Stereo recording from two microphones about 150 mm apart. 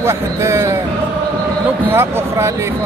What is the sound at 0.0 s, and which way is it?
Speech, 20° right (ahead or behind).